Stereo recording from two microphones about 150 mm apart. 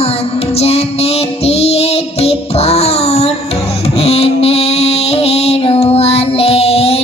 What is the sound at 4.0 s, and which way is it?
Mantra, 40° left (ahead or behind).